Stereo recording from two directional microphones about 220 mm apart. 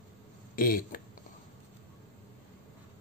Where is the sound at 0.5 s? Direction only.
40° left (ahead or behind).